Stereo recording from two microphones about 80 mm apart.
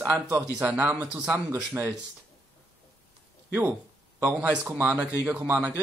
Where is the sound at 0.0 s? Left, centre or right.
Right.